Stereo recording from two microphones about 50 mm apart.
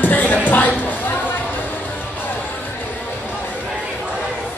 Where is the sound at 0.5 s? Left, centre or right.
Left.